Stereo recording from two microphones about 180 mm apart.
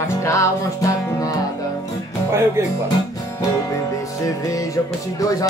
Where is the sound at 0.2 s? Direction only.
15° left (ahead or behind).